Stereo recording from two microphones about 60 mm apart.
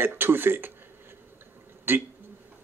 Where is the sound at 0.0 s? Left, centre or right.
Right.